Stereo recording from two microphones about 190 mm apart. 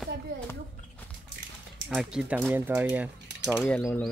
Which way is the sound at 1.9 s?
Centre (ahead or behind).